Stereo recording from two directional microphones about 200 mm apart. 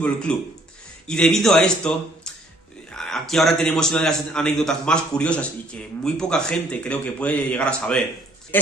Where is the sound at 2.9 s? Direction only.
Centre (ahead or behind).